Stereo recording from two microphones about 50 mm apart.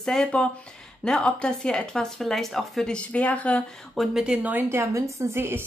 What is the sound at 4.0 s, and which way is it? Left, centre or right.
Speech, centre.